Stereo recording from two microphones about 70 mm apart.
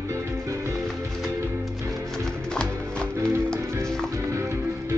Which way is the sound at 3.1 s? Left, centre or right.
Right.